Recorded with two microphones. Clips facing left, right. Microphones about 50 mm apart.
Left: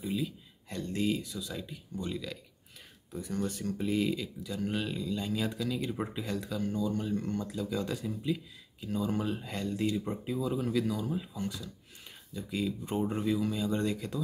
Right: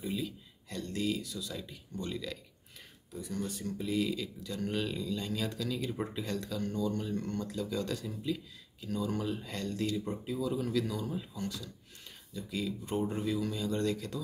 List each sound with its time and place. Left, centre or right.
0.0 s a sound: centre
0.7 s speech: left; by 2.3 s centre
3.1 s speech: left
4.2 s speech: centre